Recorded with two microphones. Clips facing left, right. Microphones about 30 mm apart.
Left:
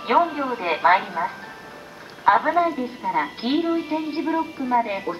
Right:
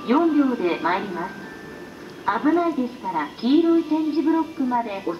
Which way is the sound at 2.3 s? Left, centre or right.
Left.